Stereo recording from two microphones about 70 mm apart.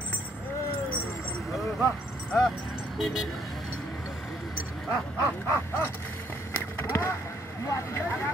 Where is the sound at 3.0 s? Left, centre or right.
Centre.